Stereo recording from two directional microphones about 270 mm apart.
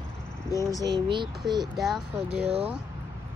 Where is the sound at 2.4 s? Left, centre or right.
Right.